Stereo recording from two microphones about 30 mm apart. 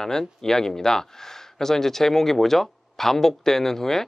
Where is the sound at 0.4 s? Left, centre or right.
Centre.